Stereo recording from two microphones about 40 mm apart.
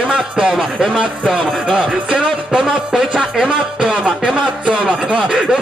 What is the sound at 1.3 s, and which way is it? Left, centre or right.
Music, right.